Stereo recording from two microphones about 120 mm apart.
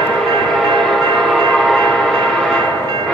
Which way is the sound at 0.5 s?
5° left (ahead or behind).